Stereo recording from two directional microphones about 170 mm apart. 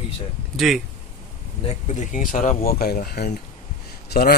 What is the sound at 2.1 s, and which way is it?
Speech, 50° left (ahead or behind).